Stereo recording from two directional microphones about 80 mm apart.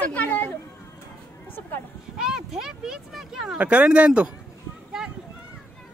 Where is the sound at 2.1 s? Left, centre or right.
Centre.